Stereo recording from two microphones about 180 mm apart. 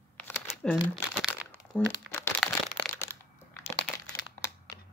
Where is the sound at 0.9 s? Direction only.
5° right (ahead or behind).